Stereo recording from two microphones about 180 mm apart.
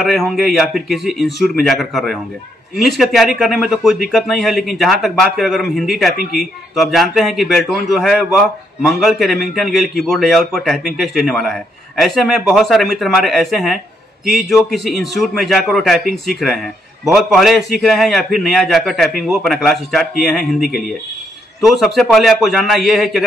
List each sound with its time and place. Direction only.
0.0 s speech: centre (ahead or behind)